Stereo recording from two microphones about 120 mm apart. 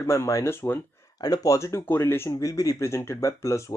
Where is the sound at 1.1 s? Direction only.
30° left (ahead or behind).